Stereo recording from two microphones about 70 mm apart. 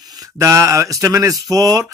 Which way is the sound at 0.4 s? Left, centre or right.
Right.